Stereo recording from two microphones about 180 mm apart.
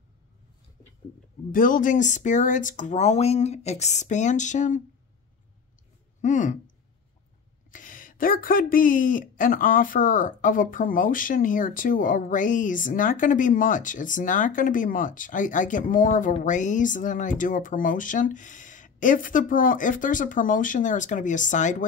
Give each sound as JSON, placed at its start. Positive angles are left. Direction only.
{"t": 1.5, "sound": "speech", "side_deg": 50}
{"t": 6.2, "sound": "speech", "side_deg": 45}
{"t": 7.7, "sound": "speech", "side_deg": 50}